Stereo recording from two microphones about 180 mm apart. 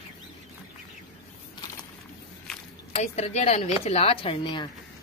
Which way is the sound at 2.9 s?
35° left (ahead or behind).